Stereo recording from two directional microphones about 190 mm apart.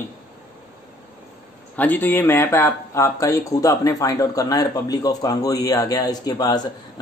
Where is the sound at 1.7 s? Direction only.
10° left (ahead or behind).